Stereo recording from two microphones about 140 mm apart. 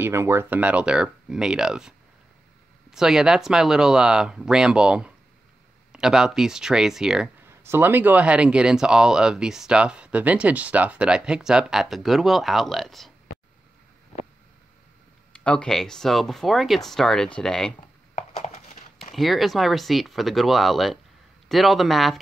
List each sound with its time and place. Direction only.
0.0 s speech: 20° right (ahead or behind)
7.4 s speech: 15° right (ahead or behind); by 13.1 s centre (ahead or behind)
15.3 s speech: 10° left (ahead or behind)
18.1 s a sound: 55° left (ahead or behind)
19.1 s speech: centre (ahead or behind)